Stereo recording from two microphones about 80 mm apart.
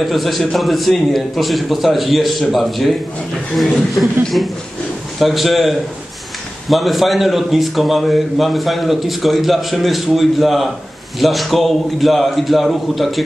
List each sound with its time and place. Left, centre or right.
0.0 s a man's voice: centre
5.2 s a man's voice: centre